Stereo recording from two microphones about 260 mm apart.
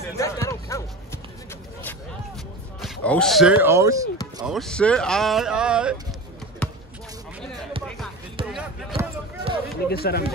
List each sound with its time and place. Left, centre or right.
0.2 s music: centre
2.8 s speech: centre
4.5 s speech: centre
6.6 s basketball bounce: centre
8.4 s a sound: centre
8.9 s basketball bounce: centre
9.8 s speech: left